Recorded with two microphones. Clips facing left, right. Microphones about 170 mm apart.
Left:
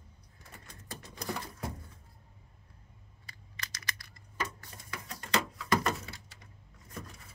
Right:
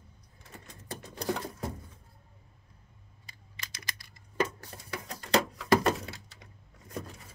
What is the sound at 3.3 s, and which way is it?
Computer keyboard, 25° right (ahead or behind).